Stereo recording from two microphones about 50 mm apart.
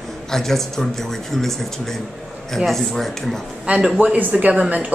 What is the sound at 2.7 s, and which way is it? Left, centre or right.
Speech, centre.